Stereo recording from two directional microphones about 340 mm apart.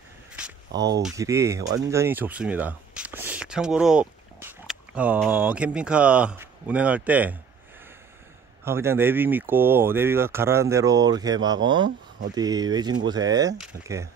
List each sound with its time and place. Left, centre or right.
0.7 s speech: right
1.0 s speech: centre
8.6 s speech: centre